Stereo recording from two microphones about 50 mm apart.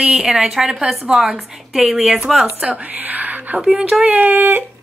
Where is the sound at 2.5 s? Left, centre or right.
Right.